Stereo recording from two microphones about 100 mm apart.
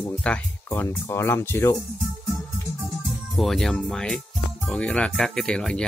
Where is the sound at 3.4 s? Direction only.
Centre (ahead or behind).